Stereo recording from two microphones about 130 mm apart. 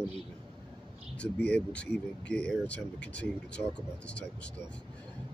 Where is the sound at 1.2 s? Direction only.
10° left (ahead or behind).